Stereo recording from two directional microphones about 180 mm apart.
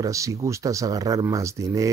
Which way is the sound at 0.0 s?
20° right (ahead or behind).